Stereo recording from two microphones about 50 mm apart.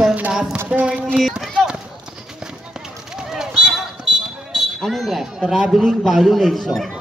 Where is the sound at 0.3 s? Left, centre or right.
Centre.